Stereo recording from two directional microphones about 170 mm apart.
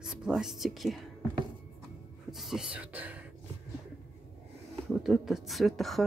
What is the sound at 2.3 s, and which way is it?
Speech, centre (ahead or behind).